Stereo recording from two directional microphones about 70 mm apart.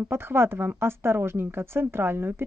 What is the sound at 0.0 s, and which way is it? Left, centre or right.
Speech, right.